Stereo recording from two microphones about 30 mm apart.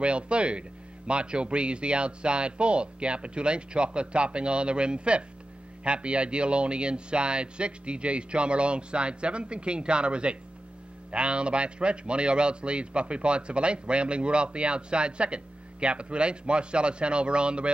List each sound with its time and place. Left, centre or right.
0.0 s a man's voice: right